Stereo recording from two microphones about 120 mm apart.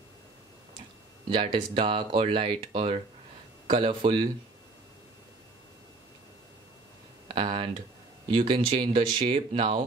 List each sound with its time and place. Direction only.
1.3 s speech: 45° right (ahead or behind)
7.3 s speech: 50° right (ahead or behind)